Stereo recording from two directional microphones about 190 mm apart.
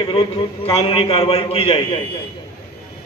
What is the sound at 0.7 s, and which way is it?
A man's voice, 30° left (ahead or behind).